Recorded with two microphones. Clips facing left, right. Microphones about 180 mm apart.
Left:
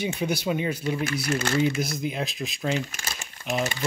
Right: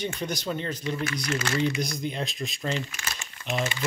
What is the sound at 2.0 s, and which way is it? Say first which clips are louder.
Speech: left 2 dB; 5° left (ahead or behind).